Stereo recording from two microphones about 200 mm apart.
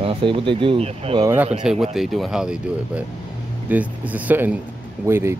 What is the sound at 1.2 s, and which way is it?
Speech, 10° right (ahead or behind).